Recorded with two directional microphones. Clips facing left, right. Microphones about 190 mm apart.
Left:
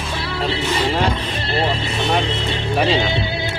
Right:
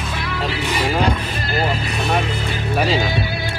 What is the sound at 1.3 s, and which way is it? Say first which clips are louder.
Vehicle: left 1 dB; 30° left (ahead or behind).